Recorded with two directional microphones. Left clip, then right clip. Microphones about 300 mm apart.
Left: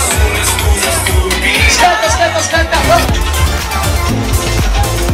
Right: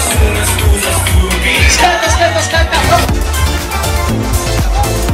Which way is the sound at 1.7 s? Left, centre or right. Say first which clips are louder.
Left 1 dB; left.